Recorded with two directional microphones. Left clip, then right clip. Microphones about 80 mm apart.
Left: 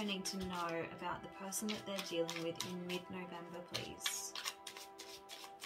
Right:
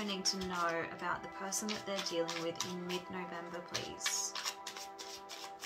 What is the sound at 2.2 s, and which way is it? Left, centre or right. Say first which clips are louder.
Music: right 4 dB; centre.